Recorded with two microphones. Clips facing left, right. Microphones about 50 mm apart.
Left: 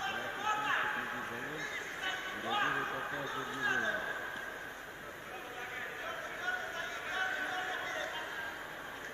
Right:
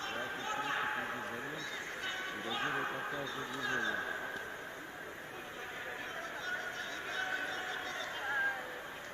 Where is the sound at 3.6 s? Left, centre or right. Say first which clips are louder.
Left 3 dB; left.